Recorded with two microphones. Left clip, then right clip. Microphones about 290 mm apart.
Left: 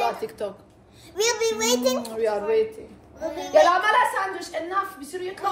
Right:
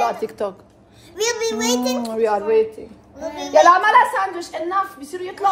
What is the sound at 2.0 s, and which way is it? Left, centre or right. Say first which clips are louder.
A woman's voice: right 5 dB; right.